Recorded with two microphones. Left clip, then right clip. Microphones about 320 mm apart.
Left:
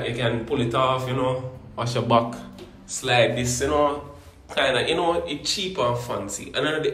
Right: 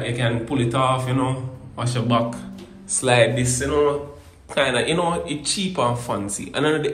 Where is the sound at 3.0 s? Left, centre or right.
Centre.